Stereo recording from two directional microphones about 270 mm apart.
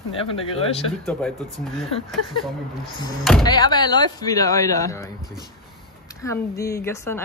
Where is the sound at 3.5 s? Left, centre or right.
Centre.